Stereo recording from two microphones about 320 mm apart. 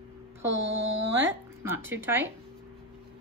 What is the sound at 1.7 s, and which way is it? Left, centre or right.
Speech, centre.